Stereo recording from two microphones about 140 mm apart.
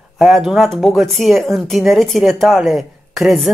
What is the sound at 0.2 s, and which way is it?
Speech, 5° right (ahead or behind).